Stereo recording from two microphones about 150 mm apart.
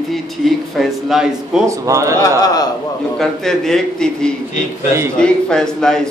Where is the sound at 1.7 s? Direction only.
20° right (ahead or behind).